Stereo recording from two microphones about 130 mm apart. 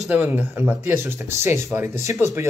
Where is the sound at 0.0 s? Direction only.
10° right (ahead or behind).